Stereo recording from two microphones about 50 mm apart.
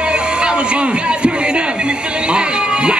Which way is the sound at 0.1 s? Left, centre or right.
Centre.